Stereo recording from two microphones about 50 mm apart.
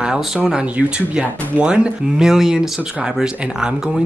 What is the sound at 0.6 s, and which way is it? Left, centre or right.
Speech, right.